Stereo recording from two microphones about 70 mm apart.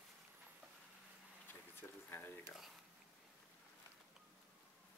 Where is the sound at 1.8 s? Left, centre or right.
Left.